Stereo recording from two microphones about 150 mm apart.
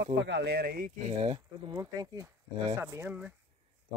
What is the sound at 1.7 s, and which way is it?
Speech, 25° right (ahead or behind).